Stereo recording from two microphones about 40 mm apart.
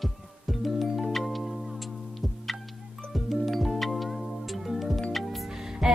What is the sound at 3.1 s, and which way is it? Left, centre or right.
Music, centre.